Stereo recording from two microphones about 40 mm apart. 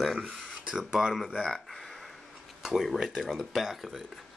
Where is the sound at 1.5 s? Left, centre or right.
Centre.